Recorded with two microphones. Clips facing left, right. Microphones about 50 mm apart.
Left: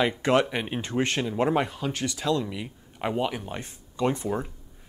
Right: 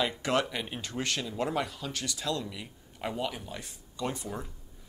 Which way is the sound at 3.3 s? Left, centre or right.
Left.